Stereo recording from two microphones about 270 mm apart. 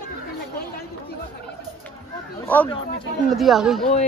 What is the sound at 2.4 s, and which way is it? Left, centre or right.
Speech, centre.